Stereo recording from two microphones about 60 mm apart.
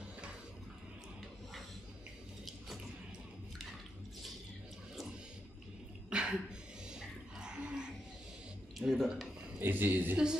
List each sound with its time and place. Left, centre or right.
6.0 s cough: centre
6.9 s a sound: centre
8.7 s speech: centre
9.6 s a man's voice: right